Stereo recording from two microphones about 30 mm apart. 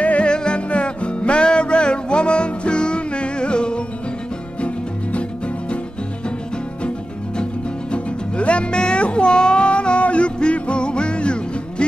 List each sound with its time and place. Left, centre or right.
0.2 s music: left
4.6 s music: left
7.9 s music: left
8.7 s a sound: left